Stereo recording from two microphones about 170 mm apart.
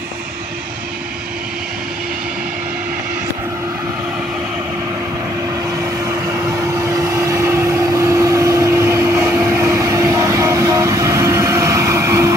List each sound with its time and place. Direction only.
6.7 s vehicle: 20° right (ahead or behind)